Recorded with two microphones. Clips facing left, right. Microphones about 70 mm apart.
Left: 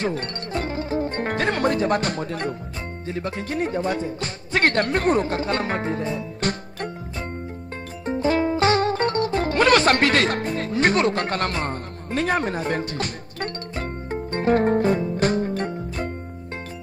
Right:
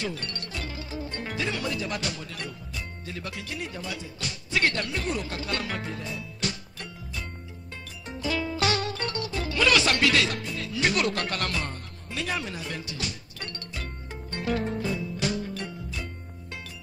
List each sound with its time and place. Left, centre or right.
0.0 s music: left
3.1 s speech: left
8.0 s music: left